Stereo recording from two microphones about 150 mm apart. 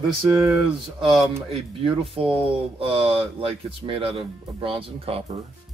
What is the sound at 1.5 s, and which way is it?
Speech, 35° right (ahead or behind).